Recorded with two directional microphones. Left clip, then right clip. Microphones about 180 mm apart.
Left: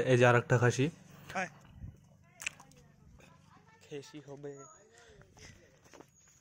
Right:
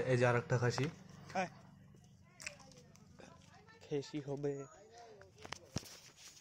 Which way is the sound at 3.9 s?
45° right (ahead or behind).